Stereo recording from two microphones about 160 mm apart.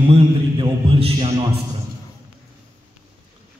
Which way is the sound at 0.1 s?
35° right (ahead or behind).